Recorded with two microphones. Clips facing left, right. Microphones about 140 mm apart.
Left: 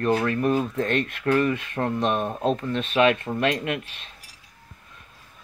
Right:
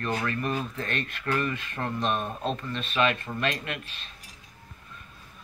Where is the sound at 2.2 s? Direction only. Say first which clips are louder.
Left 7 dB; 20° left (ahead or behind).